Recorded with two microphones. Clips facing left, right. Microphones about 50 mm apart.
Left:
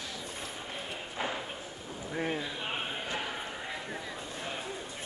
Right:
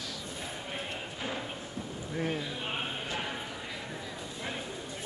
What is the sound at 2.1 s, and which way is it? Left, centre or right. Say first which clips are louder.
Speech: even; centre.